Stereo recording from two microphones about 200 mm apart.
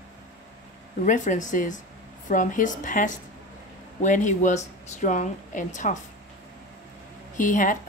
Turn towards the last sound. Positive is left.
turn(degrees=40)  # may be behind; listen again after turning